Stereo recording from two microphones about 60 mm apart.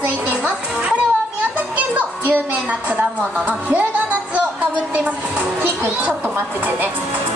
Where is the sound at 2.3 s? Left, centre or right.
Right.